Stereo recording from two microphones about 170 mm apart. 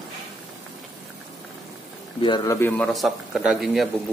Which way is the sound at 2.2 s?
25° left (ahead or behind).